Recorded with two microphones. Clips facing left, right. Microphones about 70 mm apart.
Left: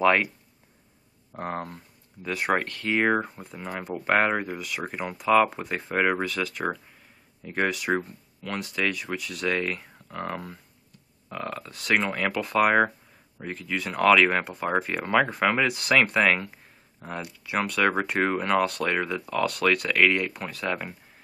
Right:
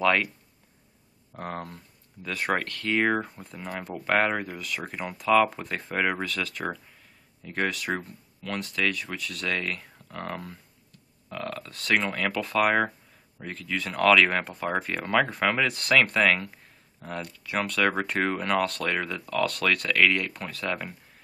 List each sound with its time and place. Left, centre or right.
0.0 s speech: centre
1.3 s speech: centre